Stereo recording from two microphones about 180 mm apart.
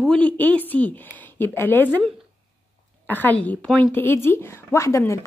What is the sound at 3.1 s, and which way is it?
Speech, 10° left (ahead or behind).